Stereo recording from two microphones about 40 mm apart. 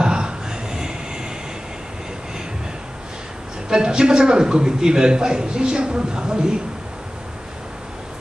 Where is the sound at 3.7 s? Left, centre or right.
Centre.